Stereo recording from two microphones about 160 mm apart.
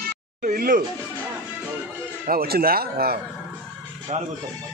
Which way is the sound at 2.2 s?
70° right (ahead or behind).